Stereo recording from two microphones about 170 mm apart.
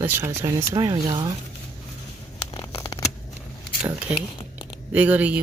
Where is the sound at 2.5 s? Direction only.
25° left (ahead or behind).